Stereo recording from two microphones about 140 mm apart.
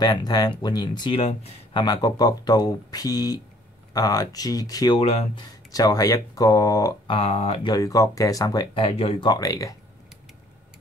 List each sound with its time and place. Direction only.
0.0 s speech: 30° left (ahead or behind)
1.2 s speech: 40° left (ahead or behind); by 4.9 s 25° left (ahead or behind)
4.9 s speech: 45° left (ahead or behind)
5.4 s speech: 25° left (ahead or behind)
7.1 s speech: 45° left (ahead or behind)
7.7 s speech: 25° left (ahead or behind); by 9.3 s 45° left (ahead or behind)
9.3 s speech: 25° left (ahead or behind)